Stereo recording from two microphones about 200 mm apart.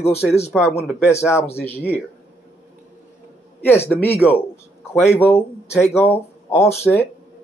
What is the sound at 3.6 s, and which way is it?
Speech, 10° left (ahead or behind).